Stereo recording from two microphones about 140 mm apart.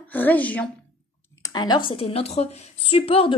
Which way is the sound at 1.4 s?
30° left (ahead or behind).